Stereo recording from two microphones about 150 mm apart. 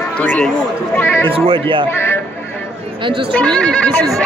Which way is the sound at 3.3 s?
5° left (ahead or behind).